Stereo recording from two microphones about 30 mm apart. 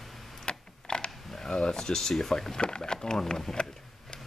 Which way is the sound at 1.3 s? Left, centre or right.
Left.